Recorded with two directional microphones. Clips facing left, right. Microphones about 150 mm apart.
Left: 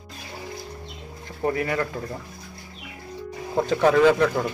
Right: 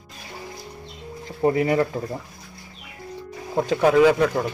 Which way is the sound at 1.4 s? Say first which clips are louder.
Right 5 dB; 20° right (ahead or behind).